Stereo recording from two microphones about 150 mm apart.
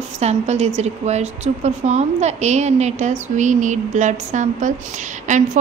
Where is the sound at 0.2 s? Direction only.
45° right (ahead or behind).